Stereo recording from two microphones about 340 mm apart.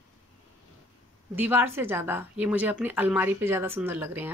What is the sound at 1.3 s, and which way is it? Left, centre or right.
A woman's voice, centre.